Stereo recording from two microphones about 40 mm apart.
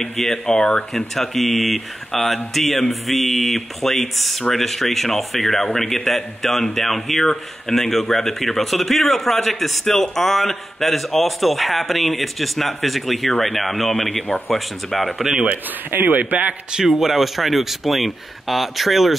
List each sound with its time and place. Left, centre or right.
0.0 s a man's voice: centre
0.5 s speech: left
1.1 s a man's voice: centre
15.9 s a man's voice: right
17.0 s speech: centre